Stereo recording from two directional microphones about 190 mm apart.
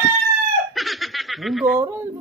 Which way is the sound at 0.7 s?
Centre (ahead or behind).